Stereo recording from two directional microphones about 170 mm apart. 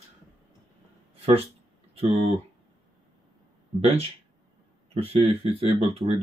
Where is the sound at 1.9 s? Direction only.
35° right (ahead or behind).